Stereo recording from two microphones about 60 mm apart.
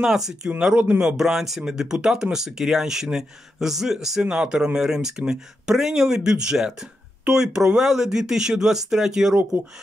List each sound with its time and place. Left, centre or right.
0.0 s speech: centre